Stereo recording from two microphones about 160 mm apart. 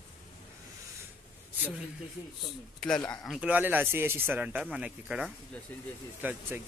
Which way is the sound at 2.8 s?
5° left (ahead or behind).